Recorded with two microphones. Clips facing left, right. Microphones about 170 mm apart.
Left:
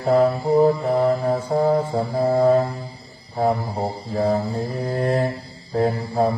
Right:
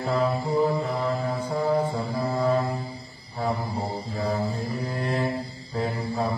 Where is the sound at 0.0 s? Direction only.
45° left (ahead or behind).